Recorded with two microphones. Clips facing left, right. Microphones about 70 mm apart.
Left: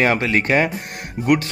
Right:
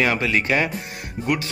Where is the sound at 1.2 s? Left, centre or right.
Left.